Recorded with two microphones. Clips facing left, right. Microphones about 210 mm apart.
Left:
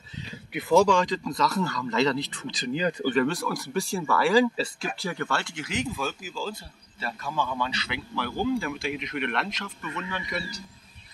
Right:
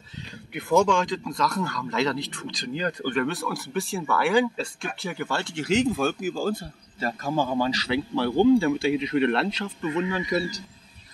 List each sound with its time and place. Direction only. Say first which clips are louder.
0.6 s speech: left 1 dB; centre (ahead or behind)
5.9 s speech: right 8 dB; 60° right (ahead or behind); by 10.4 s 30° right (ahead or behind)